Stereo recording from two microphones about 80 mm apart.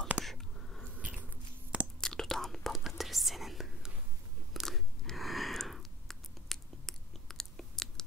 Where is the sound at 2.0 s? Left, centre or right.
Centre.